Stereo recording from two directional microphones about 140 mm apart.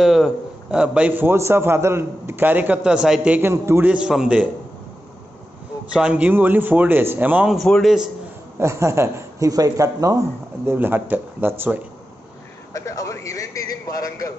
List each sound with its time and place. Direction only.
0.0 s a man's voice: centre (ahead or behind); by 3.9 s 15° right (ahead or behind)
3.9 s a man's voice: 5° right (ahead or behind)
5.9 s a man's voice: 10° right (ahead or behind)
7.5 s a man's voice: 5° left (ahead or behind)
8.5 s a man's voice: 20° right (ahead or behind)
10.7 s a man's voice: 15° right (ahead or behind)
12.7 s a sound: 25° left (ahead or behind)